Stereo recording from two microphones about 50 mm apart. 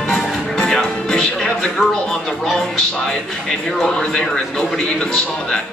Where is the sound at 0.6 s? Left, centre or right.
Centre.